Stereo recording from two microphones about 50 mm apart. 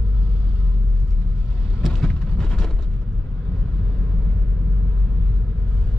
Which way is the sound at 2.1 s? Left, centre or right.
Centre.